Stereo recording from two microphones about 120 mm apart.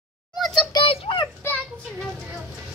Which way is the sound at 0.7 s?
40° left (ahead or behind).